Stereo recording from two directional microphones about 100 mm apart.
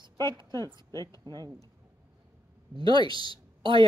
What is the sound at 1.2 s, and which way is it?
Speech, 40° right (ahead or behind).